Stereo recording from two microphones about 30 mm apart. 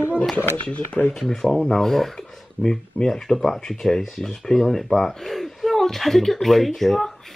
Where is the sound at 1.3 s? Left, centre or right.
Centre.